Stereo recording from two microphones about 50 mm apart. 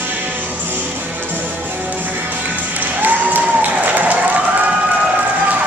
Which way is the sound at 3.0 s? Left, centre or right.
Right.